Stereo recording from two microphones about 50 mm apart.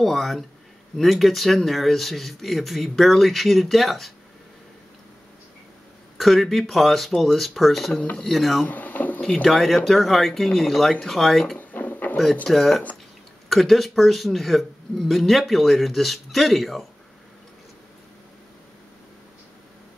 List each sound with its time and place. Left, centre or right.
0.0 s speech: centre
6.1 s speech: centre
8.6 s a sound: left
9.2 s speech: centre
11.5 s drawer open or close: left
12.4 s speech: centre